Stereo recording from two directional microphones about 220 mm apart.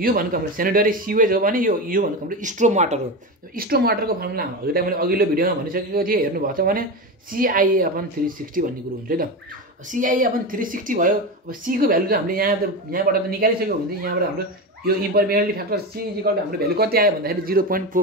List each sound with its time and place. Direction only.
0.0 s speech: 40° right (ahead or behind)
3.5 s speech: 45° right (ahead or behind)
9.9 s speech: 35° right (ahead or behind)
15.1 s speech: 45° right (ahead or behind)